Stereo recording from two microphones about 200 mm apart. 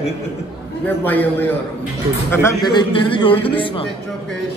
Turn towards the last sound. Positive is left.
turn(degrees=25)  # may be behind; listen again after turning